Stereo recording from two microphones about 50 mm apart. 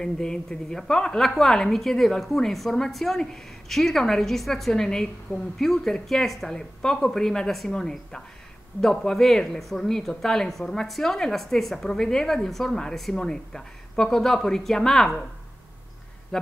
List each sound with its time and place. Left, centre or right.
0.0 s a woman's voice: centre
6.5 s a woman's voice: centre